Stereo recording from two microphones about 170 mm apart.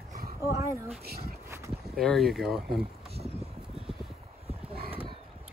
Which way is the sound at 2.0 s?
Centre (ahead or behind).